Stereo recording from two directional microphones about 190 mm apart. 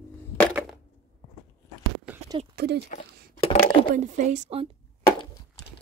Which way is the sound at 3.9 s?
40° right (ahead or behind).